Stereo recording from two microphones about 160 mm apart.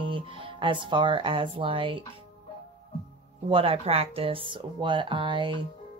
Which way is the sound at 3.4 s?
35° right (ahead or behind).